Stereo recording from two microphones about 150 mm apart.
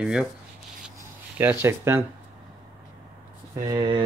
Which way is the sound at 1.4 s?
15° right (ahead or behind).